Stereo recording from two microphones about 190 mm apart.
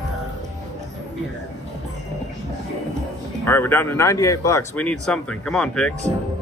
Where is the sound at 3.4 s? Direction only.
10° left (ahead or behind).